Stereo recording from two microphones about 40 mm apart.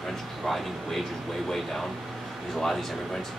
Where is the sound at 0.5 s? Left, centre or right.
Centre.